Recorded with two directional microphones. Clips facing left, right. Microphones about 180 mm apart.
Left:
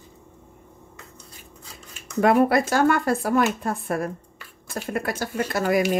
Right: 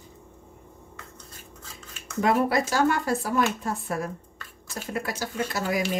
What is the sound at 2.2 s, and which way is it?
Speech, 55° left (ahead or behind).